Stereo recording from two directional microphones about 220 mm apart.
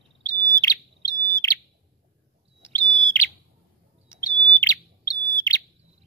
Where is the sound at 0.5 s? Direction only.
15° left (ahead or behind).